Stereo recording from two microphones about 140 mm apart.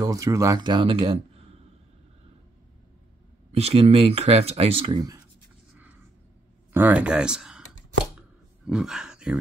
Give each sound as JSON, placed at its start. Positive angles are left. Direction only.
{"t": 0.0, "sound": "speech", "side_deg": -25}
{"t": 3.5, "sound": "speech", "side_deg": -45}
{"t": 6.7, "sound": "speech", "side_deg": -15}
{"t": 8.6, "sound": "speech", "side_deg": -5}